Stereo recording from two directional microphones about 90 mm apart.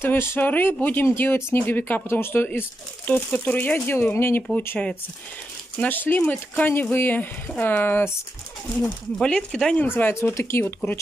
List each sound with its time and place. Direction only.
0.0 s speech: 25° left (ahead or behind)
4.6 s speech: 15° left (ahead or behind)
8.8 s speech: 10° left (ahead or behind)
9.8 s speech: 25° left (ahead or behind)